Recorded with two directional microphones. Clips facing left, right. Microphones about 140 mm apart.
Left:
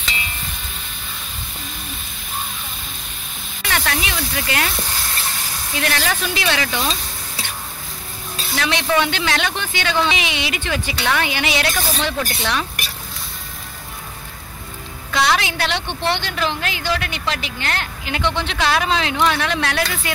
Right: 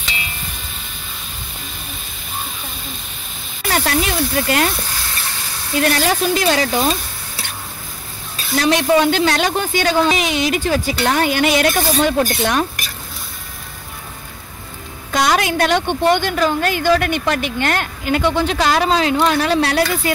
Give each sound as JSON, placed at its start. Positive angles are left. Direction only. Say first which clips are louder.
{"t": 3.6, "sound": "speech", "louder": "right 5 dB", "side_deg": -40}
{"t": 5.8, "sound": "speech", "louder": "right 6 dB", "side_deg": -40}
{"t": 8.5, "sound": "a woman's voice", "louder": "right 5 dB", "side_deg": -40}
{"t": 15.0, "sound": "a woman's voice", "louder": "right 3 dB", "side_deg": -45}